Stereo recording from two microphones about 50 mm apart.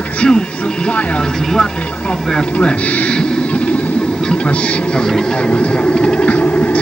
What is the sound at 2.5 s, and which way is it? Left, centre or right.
Speech, left.